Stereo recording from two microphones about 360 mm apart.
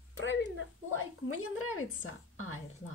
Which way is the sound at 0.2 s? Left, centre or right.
Left.